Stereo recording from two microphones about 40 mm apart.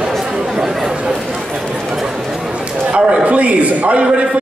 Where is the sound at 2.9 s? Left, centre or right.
Right.